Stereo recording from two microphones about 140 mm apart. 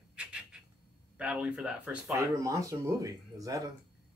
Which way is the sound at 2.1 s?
25° right (ahead or behind).